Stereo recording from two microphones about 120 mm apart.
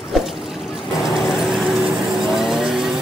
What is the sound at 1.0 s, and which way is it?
Vehicle, 5° right (ahead or behind).